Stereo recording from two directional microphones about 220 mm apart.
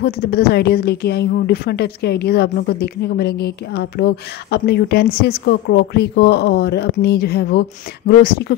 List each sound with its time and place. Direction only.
0.0 s speech: 45° left (ahead or behind)